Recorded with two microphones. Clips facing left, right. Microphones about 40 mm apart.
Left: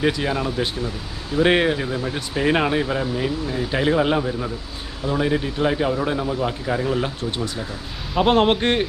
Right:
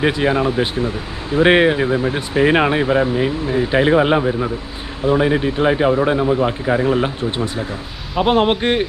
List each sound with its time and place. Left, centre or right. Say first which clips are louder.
0.0 s speech: right 5 dB; right
8.1 s a man's voice: right 2 dB; centre